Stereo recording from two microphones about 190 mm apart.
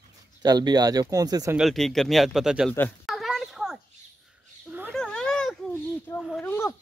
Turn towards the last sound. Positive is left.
turn(degrees=5)  # may be behind; listen again after turning